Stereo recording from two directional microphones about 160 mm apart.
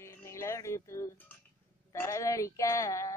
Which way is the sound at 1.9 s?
20° left (ahead or behind).